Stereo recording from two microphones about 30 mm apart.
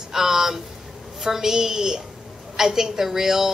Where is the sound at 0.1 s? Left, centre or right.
Centre.